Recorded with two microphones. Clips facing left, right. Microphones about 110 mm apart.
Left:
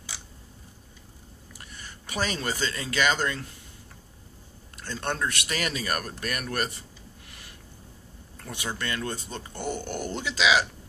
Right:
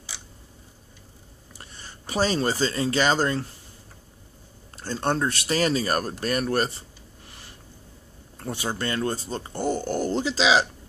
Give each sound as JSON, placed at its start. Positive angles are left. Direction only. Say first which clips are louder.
{"t": 1.5, "sound": "speech", "louder": "right 1 dB", "side_deg": -30}
{"t": 4.7, "sound": "speech", "louder": "right 6 dB", "side_deg": -35}
{"t": 8.4, "sound": "speech", "louder": "right 5 dB", "side_deg": -35}